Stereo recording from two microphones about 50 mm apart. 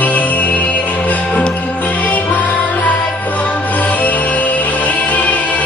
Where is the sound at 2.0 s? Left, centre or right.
Left.